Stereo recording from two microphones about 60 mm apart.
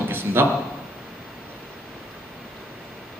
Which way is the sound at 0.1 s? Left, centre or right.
Right.